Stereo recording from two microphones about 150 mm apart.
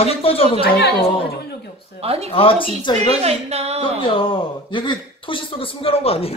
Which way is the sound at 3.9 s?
35° left (ahead or behind).